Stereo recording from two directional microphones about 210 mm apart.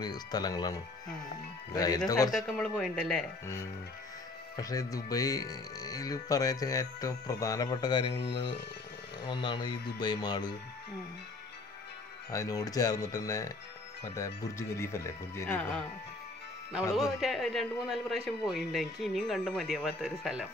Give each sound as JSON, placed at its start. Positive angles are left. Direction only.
{"t": 0.0, "sound": "speech", "side_deg": 20}
{"t": 2.3, "sound": "speech", "side_deg": 0}
{"t": 4.6, "sound": "speech", "side_deg": 15}
{"t": 12.3, "sound": "speech", "side_deg": 15}
{"t": 16.9, "sound": "speech", "side_deg": 0}